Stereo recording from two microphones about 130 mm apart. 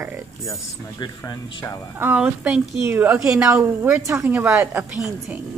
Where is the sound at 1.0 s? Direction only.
35° left (ahead or behind).